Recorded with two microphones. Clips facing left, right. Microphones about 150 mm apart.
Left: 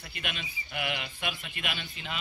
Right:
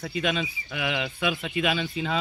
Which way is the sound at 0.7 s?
90° right.